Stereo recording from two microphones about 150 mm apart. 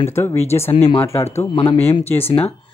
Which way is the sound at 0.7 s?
40° left (ahead or behind).